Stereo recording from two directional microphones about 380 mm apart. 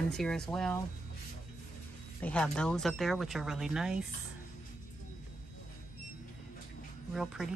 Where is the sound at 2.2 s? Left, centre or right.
Centre.